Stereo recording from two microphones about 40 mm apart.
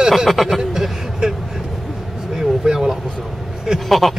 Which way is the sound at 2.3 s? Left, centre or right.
Centre.